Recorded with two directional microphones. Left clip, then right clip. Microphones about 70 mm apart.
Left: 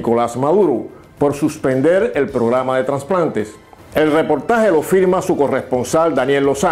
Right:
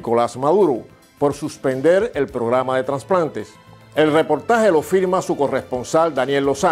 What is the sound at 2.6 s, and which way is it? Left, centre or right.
Speech, right.